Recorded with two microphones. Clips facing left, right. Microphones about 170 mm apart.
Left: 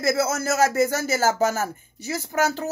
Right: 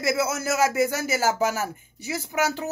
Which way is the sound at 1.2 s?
40° left (ahead or behind).